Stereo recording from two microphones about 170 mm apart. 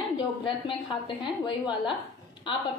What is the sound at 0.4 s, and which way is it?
A woman's voice, 30° left (ahead or behind).